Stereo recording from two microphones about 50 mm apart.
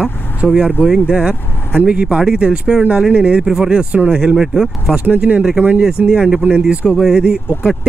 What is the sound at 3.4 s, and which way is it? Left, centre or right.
Speech, centre.